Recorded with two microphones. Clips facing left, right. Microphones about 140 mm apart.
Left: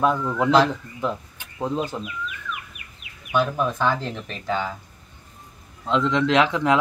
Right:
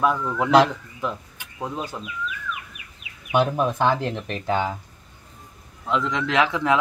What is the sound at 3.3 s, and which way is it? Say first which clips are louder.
Speech: right 2 dB; 20° right (ahead or behind).